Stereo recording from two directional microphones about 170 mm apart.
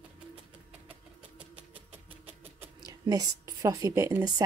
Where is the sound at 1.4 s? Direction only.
10° right (ahead or behind).